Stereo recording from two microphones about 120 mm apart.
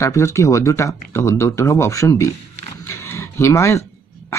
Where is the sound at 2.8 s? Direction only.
20° left (ahead or behind).